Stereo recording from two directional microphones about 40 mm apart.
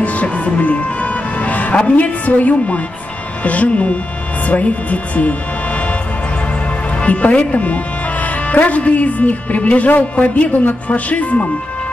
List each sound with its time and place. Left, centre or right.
0.0 s music: left
1.8 s speech: left
7.1 s speech: left